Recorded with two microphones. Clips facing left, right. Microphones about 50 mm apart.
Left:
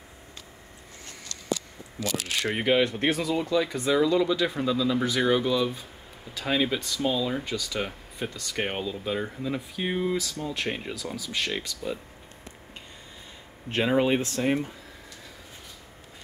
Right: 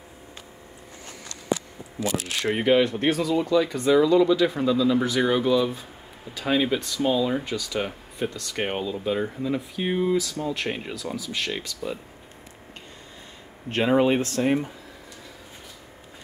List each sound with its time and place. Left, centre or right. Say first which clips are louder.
2.0 s speech: right 4 dB; centre
2.4 s speech: right 4 dB; centre
13.8 s speech: right 3 dB; centre